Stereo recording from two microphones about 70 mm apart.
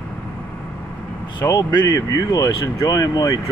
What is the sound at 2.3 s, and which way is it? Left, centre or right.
Speech, left.